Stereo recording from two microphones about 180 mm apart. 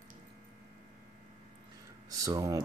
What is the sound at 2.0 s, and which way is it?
Speech, 20° right (ahead or behind).